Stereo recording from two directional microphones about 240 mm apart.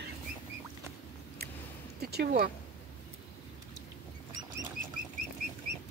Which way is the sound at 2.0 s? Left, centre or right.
Right.